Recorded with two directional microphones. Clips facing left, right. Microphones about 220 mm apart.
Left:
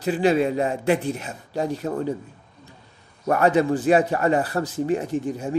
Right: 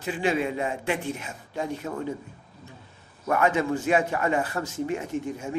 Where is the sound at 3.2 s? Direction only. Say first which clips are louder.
Left 5 dB; 35° left (ahead or behind).